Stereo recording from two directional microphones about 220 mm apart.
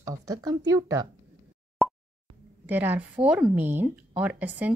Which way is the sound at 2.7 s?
10° right (ahead or behind).